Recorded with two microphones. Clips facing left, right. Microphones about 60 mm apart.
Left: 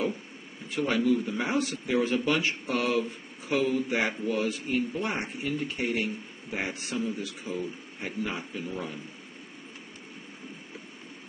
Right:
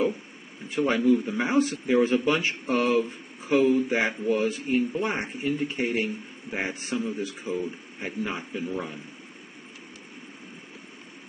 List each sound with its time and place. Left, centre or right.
0.7 s speech: right